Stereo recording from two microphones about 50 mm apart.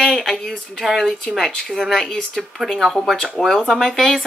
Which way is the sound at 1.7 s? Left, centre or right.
Centre.